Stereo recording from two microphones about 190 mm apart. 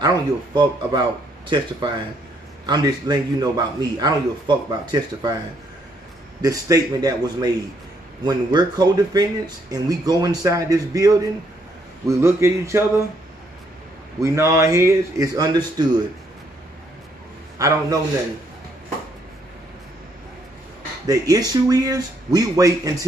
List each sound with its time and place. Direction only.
0.0 s speech: 20° right (ahead or behind)
6.4 s speech: 20° right (ahead or behind)
14.2 s speech: 15° right (ahead or behind)
17.6 s speech: 15° right (ahead or behind)
21.1 s speech: 20° right (ahead or behind)